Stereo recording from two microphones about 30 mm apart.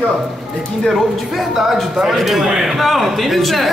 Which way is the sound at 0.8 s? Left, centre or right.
Centre.